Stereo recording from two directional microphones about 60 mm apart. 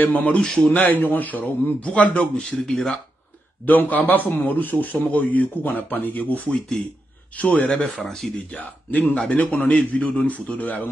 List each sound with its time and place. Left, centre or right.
0.0 s a man's voice: left
0.4 s a man's voice: centre
0.7 s a man's voice: left; by 3.0 s centre
3.6 s a man's voice: left
8.0 s speech: centre
8.5 s a man's voice: left